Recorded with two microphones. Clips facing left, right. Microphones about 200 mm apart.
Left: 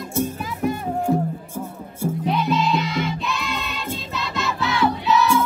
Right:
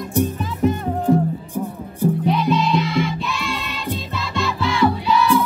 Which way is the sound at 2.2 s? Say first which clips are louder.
Left 1 dB; centre (ahead or behind).